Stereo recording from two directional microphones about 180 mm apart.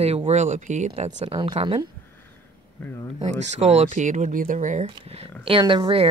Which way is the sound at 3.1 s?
40° right (ahead or behind).